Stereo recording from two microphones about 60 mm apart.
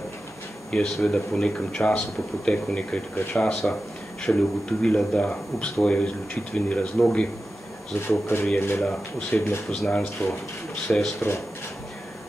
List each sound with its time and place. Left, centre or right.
0.7 s speech: centre
8.1 s speech: left
9.3 s speech: left